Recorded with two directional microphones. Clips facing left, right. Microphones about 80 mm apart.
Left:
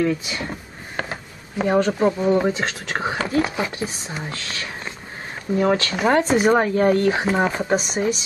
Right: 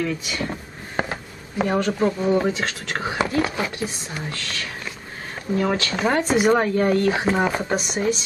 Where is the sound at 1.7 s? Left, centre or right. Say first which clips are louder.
Left 4 dB; centre.